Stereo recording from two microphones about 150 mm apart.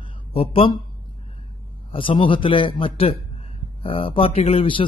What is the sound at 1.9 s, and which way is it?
A man's voice, 35° left (ahead or behind).